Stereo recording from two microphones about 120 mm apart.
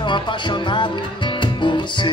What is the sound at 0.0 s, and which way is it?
Music, 40° left (ahead or behind).